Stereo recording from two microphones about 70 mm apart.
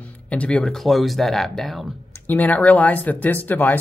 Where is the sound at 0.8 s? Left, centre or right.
Centre.